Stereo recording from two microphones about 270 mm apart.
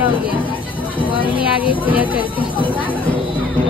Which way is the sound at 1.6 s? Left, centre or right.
Centre.